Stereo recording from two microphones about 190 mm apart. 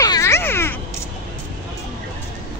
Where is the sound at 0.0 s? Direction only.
15° left (ahead or behind).